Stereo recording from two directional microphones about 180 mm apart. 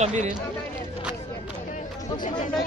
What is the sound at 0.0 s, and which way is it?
Speech, 40° right (ahead or behind).